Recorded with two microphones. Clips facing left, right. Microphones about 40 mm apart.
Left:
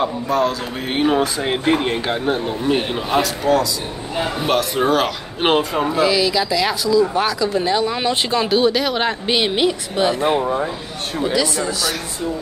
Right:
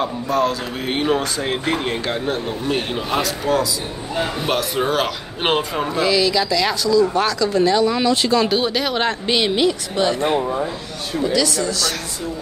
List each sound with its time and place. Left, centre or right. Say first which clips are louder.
0.0 s speech: left 1 dB; centre; by 8.5 s left
8.5 s speech: left 3 dB; centre
11.3 s speech: even; left